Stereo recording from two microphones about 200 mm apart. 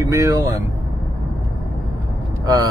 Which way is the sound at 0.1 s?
15° right (ahead or behind).